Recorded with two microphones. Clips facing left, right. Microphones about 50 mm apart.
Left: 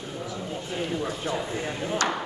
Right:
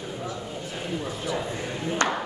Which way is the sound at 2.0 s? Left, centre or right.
Right.